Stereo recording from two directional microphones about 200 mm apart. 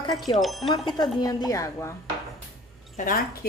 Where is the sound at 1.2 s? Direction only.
20° left (ahead or behind).